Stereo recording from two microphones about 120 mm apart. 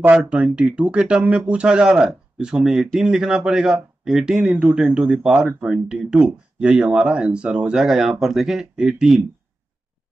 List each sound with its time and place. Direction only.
0.0 s speech: 10° right (ahead or behind)